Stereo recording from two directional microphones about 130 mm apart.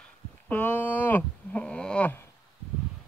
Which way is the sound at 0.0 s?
10° left (ahead or behind).